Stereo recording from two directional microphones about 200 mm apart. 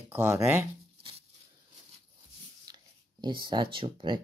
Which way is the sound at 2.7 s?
20° right (ahead or behind).